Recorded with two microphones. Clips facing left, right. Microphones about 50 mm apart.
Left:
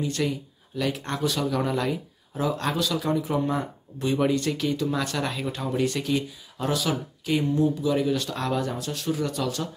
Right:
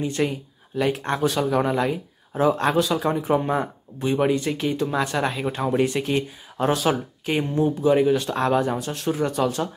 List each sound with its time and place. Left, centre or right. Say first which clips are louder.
0.0 s speech: right 3 dB; right
2.3 s speech: right 7 dB; right
4.0 s speech: right 2 dB; right
5.6 s speech: right 5 dB; right